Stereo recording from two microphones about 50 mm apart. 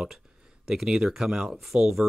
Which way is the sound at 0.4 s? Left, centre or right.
Centre.